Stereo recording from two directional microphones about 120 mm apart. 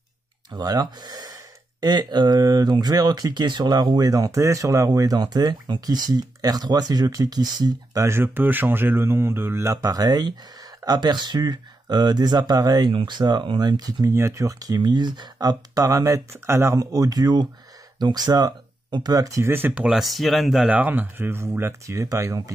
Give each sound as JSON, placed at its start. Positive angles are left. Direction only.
{"t": 0.5, "sound": "speech", "side_deg": -35}